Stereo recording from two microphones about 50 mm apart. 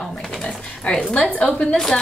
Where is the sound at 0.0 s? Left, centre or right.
Centre.